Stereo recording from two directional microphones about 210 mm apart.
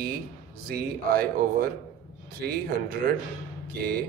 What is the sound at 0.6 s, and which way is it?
Speech, 45° right (ahead or behind).